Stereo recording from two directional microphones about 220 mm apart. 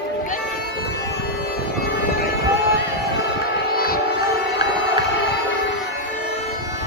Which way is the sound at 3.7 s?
45° left (ahead or behind).